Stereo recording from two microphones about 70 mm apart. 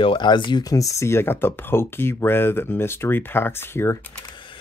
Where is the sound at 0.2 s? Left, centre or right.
Left.